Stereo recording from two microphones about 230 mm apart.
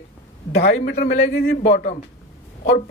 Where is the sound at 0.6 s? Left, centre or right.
Left.